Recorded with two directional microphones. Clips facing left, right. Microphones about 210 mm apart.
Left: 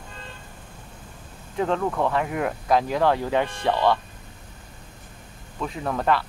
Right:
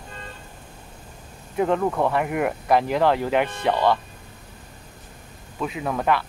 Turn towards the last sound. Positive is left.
turn(degrees=-5)  # may be behind; listen again after turning